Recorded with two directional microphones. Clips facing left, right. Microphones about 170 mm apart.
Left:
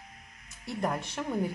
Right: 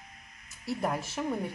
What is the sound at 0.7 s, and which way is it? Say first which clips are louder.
Speech: even; 5° right (ahead or behind).